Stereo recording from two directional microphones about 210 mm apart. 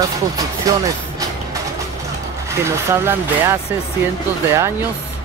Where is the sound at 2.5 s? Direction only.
10° right (ahead or behind).